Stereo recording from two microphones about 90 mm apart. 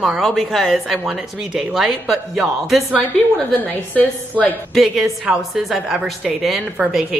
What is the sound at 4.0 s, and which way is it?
Speech, 20° left (ahead or behind).